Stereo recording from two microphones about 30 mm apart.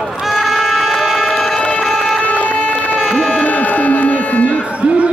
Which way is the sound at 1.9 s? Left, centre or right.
Centre.